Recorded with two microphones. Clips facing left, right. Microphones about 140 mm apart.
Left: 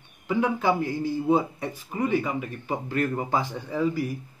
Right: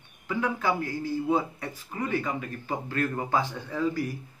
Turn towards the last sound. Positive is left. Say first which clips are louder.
# left 2 dB
turn(degrees=10)  # may be behind; listen again after turning